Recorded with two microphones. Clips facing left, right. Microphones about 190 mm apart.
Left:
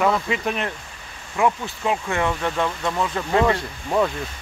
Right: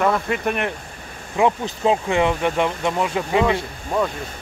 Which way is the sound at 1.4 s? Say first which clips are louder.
Right 3 dB; 20° right (ahead or behind).